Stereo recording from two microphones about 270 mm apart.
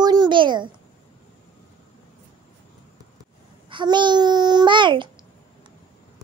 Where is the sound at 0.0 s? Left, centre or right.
Centre.